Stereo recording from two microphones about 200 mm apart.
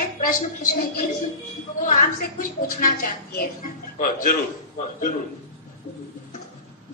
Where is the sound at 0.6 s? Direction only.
45° left (ahead or behind).